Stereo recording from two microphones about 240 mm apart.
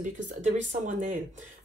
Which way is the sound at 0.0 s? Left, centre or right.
Right.